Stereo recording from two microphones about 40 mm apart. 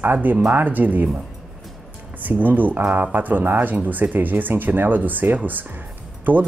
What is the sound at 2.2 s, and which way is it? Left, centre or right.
Speech, right.